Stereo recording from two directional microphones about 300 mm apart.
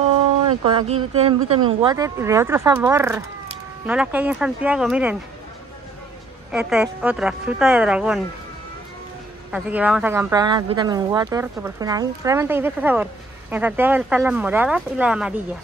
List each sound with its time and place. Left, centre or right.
0.7 s speech: centre
6.5 s speech: centre
9.5 s speech: centre